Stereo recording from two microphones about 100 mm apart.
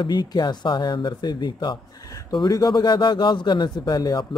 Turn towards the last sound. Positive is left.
turn(degrees=45)  # may be behind; listen again after turning